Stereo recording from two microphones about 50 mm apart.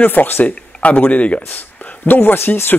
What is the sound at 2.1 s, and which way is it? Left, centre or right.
Speech, left.